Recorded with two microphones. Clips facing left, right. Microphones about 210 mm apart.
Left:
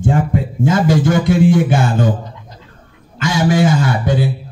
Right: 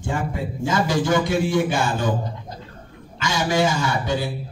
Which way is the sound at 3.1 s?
50° left (ahead or behind).